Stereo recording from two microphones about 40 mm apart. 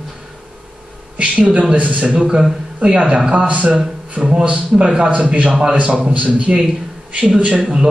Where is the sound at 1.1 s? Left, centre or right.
Right.